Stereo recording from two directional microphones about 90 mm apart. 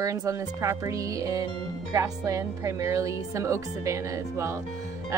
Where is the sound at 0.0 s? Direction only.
35° right (ahead or behind).